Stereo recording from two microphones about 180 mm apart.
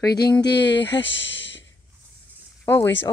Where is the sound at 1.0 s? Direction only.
90° left.